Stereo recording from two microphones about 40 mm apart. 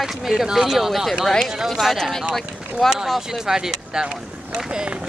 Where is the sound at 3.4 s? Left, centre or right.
Centre.